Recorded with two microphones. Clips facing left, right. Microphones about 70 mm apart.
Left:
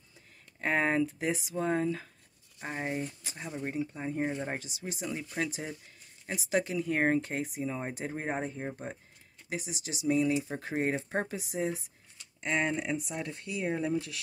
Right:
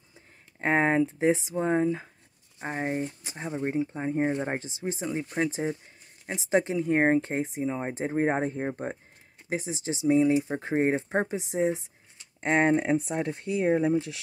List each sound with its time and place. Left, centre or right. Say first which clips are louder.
0.1 s speech: right 3 dB; right
12.4 s speech: right 8 dB; right